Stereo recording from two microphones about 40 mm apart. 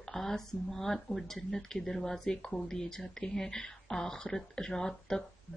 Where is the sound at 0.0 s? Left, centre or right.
Centre.